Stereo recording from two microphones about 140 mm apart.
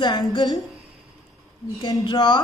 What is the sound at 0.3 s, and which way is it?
Speech, 30° left (ahead or behind).